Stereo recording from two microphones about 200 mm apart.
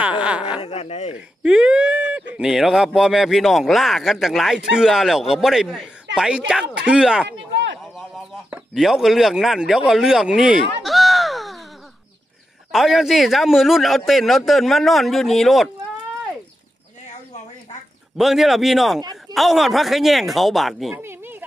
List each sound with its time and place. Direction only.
0.0 s speech: 5° right (ahead or behind)
0.6 s speech: 30° left (ahead or behind)
1.4 s speech: 5° right (ahead or behind)
7.2 s a sound: 65° right (ahead or behind)
8.1 s speech: centre (ahead or behind)
10.8 s a sound: centre (ahead or behind)
12.7 s speech: centre (ahead or behind)
18.1 s speech: centre (ahead or behind)
21.0 s a sound: 10° right (ahead or behind)